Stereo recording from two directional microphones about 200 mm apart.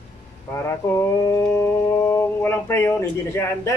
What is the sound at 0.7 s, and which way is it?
Mantra, 15° left (ahead or behind).